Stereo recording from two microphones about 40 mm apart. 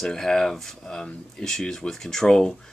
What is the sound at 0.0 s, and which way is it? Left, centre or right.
Speech, centre.